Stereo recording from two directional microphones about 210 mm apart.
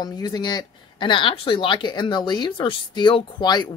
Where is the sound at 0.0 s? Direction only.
20° left (ahead or behind).